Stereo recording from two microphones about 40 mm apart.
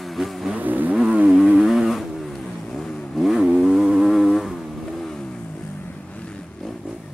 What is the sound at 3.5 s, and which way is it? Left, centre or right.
Vehicle, centre.